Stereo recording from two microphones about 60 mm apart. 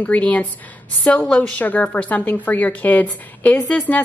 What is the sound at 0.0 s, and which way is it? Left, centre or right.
A woman's voice, left.